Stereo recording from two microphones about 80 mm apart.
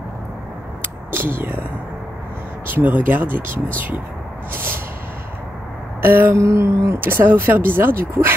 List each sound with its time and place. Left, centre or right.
0.8 s a sound: right
2.7 s speech: right
6.0 s speech: right